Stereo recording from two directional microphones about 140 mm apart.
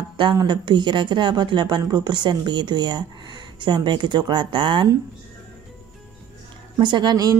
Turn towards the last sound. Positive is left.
turn(degrees=-30)  # may be behind; listen again after turning